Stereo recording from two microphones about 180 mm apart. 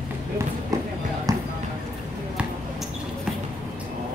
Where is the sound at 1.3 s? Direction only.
20° right (ahead or behind).